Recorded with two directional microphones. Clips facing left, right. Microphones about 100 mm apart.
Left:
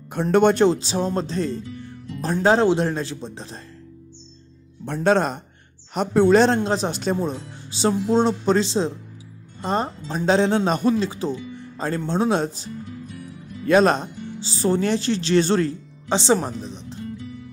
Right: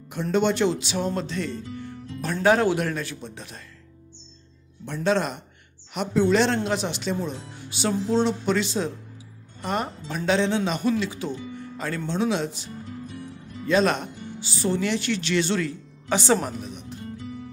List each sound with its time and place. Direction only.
0.1 s a man's voice: 55° left (ahead or behind); by 3.6 s 30° left (ahead or behind)
4.8 s speech: 50° left (ahead or behind)
6.5 s speech: 30° left (ahead or behind)
12.1 s speech: 45° left (ahead or behind)
13.8 s speech: 30° left (ahead or behind)
16.1 s a man's voice: 25° left (ahead or behind)